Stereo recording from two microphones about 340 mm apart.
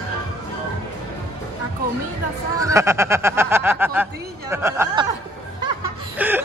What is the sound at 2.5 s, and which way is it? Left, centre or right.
Speech, centre.